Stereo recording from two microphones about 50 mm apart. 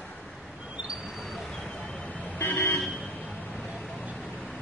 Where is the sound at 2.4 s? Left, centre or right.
Left.